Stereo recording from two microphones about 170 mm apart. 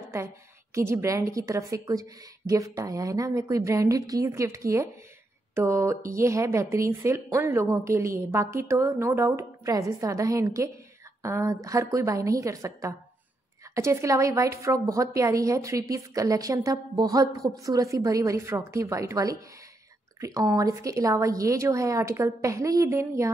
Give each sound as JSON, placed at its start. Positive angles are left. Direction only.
{"t": 0.7, "sound": "a woman's voice", "side_deg": -15}